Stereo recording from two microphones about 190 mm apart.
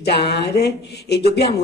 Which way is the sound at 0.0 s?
60° left (ahead or behind).